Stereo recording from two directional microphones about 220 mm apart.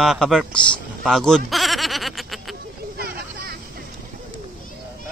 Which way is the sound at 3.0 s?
45° right (ahead or behind).